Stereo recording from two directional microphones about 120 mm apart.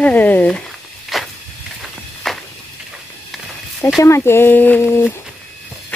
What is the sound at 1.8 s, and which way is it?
Walk, centre (ahead or behind).